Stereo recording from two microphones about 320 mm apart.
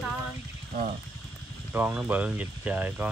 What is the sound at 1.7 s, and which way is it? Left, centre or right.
Speech, centre.